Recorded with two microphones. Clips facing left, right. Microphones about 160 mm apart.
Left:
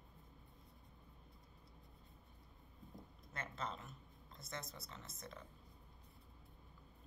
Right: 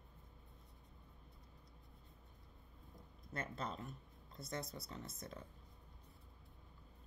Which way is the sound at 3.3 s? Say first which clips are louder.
Right 2 dB; 40° right (ahead or behind).